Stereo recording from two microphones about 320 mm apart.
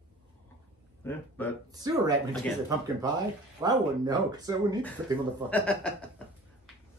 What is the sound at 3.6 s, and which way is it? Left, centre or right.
Speech, centre.